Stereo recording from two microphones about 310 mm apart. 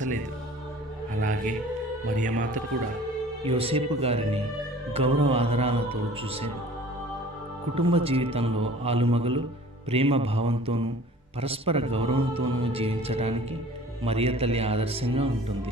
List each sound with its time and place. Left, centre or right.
1.1 s speech: right
7.7 s speech: centre